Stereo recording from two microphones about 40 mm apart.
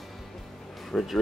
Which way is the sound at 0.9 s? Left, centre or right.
Centre.